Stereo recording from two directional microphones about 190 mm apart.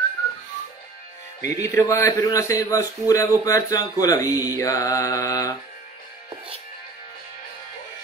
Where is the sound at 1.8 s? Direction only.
15° left (ahead or behind).